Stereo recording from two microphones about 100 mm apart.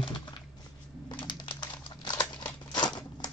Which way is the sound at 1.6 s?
45° left (ahead or behind).